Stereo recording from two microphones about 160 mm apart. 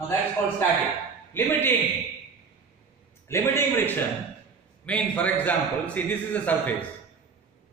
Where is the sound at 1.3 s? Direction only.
15° left (ahead or behind).